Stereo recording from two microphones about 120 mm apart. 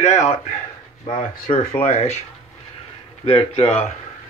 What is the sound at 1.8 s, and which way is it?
Speech, 60° left (ahead or behind).